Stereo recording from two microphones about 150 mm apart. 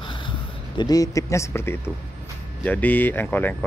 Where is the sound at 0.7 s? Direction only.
25° left (ahead or behind).